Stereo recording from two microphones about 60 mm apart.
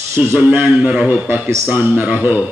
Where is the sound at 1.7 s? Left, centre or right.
Right.